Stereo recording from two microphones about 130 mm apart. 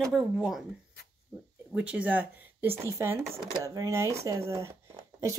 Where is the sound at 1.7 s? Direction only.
10° right (ahead or behind).